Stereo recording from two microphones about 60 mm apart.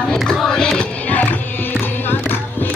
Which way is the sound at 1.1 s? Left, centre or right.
Left.